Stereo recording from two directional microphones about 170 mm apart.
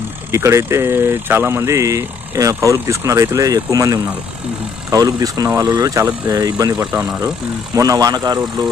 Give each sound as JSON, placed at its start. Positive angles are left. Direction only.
{"t": 0.3, "sound": "speech", "side_deg": -15}
{"t": 6.9, "sound": "speech", "side_deg": -5}
{"t": 7.7, "sound": "speech", "side_deg": -20}